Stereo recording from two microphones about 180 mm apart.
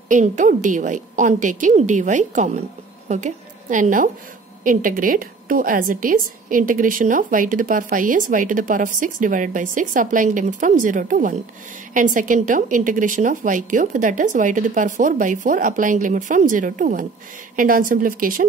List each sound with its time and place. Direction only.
0.1 s a woman's voice: 45° right (ahead or behind)